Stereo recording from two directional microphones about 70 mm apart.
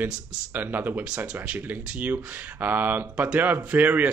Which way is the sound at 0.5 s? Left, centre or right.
Right.